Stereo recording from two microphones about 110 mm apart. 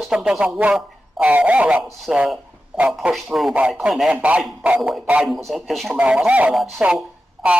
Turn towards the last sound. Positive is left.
turn(degrees=-5)  # may be behind; listen again after turning